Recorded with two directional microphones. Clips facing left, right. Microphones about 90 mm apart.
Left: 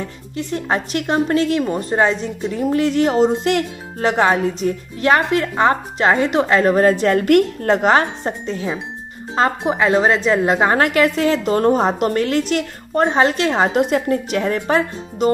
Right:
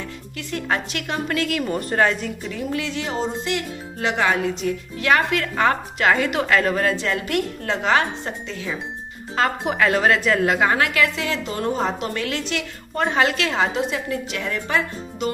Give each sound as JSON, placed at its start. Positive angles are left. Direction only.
{"t": 0.0, "sound": "speech", "side_deg": 30}
{"t": 2.6, "sound": "speech", "side_deg": 45}
{"t": 3.2, "sound": "speech", "side_deg": 60}
{"t": 13.7, "sound": "speech", "side_deg": 50}